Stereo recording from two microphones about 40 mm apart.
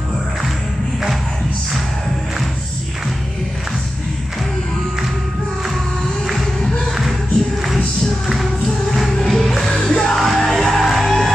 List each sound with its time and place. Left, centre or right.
9.1 s music: centre
10.1 s music: centre